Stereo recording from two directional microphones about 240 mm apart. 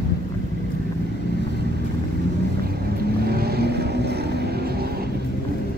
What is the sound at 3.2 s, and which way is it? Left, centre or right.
Vehicle, right.